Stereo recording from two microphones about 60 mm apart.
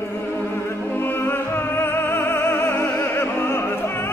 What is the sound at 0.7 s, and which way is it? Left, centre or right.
Music, left.